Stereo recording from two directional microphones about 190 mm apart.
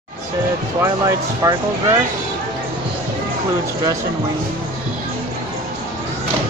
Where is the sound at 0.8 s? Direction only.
15° right (ahead or behind).